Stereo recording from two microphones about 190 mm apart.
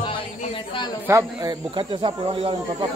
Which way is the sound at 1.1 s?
15° right (ahead or behind).